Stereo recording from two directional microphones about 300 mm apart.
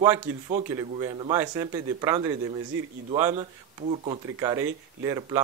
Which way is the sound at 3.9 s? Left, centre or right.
Centre.